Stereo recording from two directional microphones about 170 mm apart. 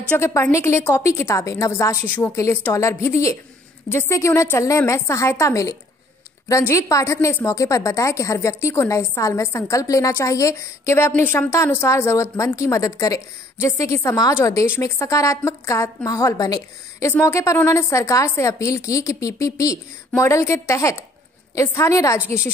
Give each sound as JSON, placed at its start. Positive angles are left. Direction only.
{"t": 0.2, "sound": "a woman's voice", "side_deg": 15}